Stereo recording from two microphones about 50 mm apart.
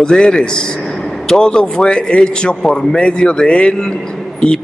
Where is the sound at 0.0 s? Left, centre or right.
Centre.